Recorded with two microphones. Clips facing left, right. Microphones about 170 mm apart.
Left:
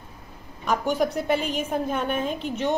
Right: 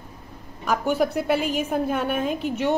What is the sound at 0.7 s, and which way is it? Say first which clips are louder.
A woman's voice: right 1 dB; 5° right (ahead or behind).